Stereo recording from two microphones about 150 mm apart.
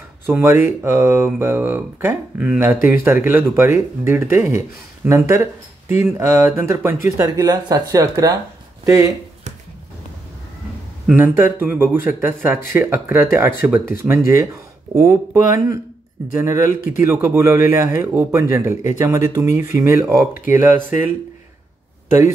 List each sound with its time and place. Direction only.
0.3 s speech: 20° right (ahead or behind)
11.1 s speech: 10° right (ahead or behind)